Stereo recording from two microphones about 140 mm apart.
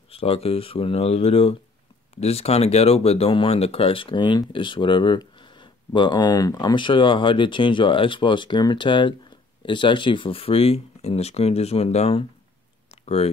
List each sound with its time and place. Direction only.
0.1 s speech: 45° left (ahead or behind)